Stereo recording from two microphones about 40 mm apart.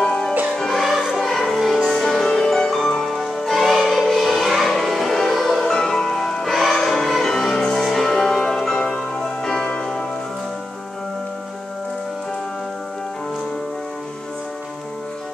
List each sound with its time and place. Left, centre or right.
0.0 s music: centre
0.7 s music: centre
3.0 s music: centre
5.7 s music: centre